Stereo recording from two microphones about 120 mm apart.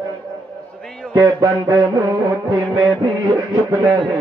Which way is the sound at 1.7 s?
35° right (ahead or behind).